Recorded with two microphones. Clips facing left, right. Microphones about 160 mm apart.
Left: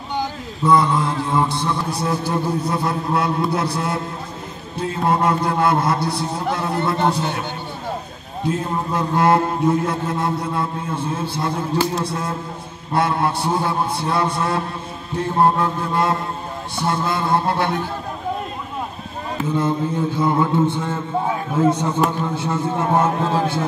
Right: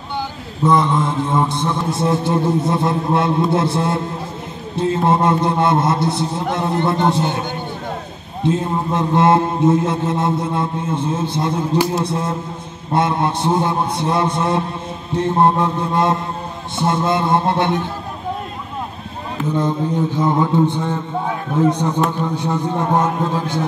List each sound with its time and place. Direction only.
0.7 s a man's voice: 20° right (ahead or behind)
8.5 s a man's voice: 25° right (ahead or behind)
19.6 s mantra: 15° right (ahead or behind)